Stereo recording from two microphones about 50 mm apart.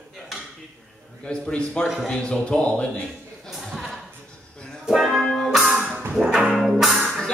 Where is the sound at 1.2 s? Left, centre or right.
Centre.